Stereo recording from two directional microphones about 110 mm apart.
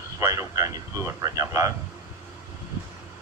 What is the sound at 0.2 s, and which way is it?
A man's voice, 30° right (ahead or behind).